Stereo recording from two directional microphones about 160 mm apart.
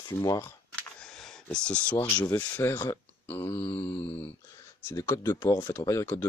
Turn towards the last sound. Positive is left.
turn(degrees=15)  # may be behind; listen again after turning